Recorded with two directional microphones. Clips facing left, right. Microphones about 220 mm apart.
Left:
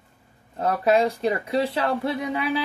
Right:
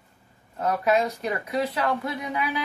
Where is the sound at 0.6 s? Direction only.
30° left (ahead or behind).